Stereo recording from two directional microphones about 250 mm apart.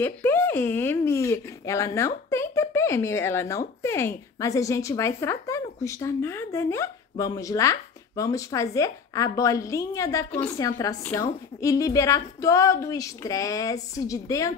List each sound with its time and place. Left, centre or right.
0.0 s speech: centre